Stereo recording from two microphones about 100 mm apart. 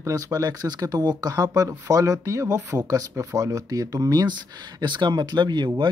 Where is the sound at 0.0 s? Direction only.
35° right (ahead or behind).